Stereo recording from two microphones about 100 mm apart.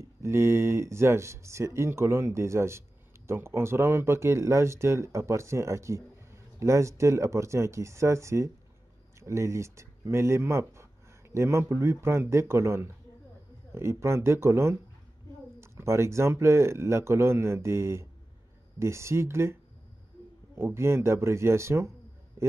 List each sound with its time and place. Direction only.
0.0 s speech: 25° right (ahead or behind)